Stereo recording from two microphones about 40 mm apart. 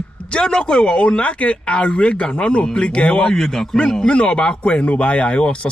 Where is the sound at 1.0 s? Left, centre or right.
Left.